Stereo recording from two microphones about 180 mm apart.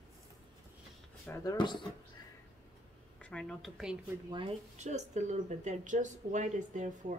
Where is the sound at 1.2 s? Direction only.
15° left (ahead or behind).